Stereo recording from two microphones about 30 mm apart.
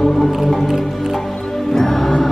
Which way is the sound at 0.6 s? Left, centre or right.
Centre.